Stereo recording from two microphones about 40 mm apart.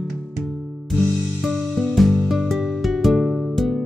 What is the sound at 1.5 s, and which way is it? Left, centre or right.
Music, centre.